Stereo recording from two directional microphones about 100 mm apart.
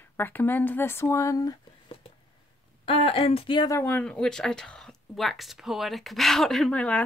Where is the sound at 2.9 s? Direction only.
75° left (ahead or behind).